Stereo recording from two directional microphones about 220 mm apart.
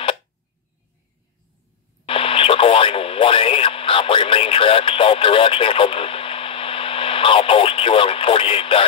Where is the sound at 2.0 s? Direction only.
25° left (ahead or behind).